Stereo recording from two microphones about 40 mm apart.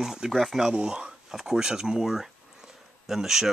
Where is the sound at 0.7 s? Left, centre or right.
Right.